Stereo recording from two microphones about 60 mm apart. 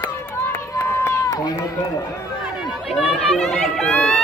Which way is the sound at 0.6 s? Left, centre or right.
Left.